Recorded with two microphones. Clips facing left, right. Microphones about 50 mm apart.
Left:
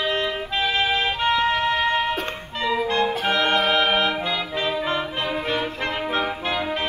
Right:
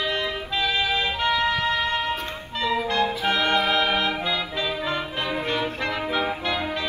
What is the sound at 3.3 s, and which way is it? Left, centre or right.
Music, left.